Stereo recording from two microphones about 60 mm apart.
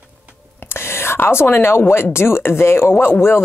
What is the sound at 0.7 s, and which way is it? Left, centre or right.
Whispering, left.